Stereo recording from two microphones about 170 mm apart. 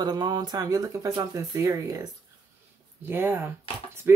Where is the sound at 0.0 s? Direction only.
25° right (ahead or behind).